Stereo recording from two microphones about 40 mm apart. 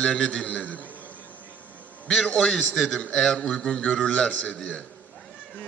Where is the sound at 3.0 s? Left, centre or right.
Centre.